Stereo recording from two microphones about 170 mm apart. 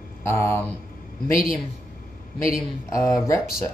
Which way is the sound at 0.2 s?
15° left (ahead or behind).